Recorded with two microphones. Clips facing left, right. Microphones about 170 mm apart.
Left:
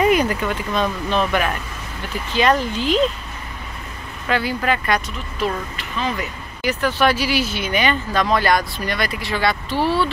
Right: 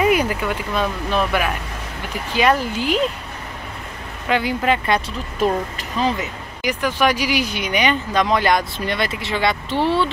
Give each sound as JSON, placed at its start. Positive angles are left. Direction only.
{"t": 0.0, "sound": "speech", "side_deg": -10}
{"t": 4.3, "sound": "speech", "side_deg": -20}
{"t": 5.4, "sound": "speech", "side_deg": -40}
{"t": 6.1, "sound": "speech", "side_deg": -15}